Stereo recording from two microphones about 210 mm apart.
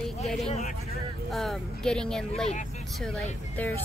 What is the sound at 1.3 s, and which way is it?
Speech, centre (ahead or behind).